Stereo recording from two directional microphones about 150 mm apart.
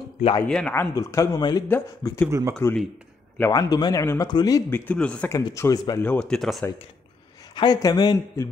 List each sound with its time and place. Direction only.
0.4 s speech: 10° left (ahead or behind)
0.9 s speech: 20° left (ahead or behind)
1.7 s speech: 15° left (ahead or behind)
2.2 s speech: 20° right (ahead or behind)
3.3 s speech: 20° left (ahead or behind)
5.4 s speech: 20° left (ahead or behind); by 6.6 s 5° left (ahead or behind)
7.5 s speech: 25° left (ahead or behind)